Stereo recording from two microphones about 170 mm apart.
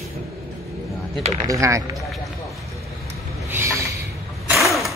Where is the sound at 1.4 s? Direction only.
20° right (ahead or behind).